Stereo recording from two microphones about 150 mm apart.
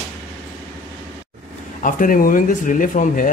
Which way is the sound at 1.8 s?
65° left (ahead or behind).